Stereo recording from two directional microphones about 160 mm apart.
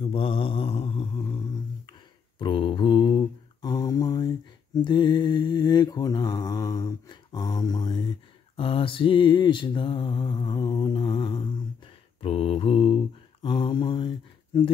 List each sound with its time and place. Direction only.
0.0 s mantra: 35° left (ahead or behind)